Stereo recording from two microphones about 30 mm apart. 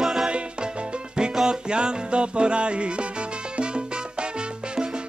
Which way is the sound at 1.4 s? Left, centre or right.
Right.